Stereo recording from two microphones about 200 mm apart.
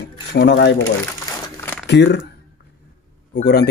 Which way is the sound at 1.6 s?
10° left (ahead or behind).